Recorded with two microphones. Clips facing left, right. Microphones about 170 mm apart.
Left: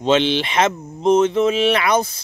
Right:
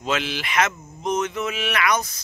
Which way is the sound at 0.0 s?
30° left (ahead or behind).